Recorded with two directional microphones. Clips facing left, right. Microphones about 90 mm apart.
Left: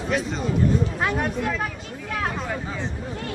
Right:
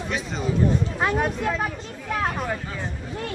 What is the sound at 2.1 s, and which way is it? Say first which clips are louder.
Speech: right 2 dB; 15° right (ahead or behind).